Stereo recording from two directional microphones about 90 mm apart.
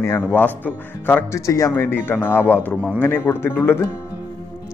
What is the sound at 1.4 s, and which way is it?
Speech, 40° left (ahead or behind).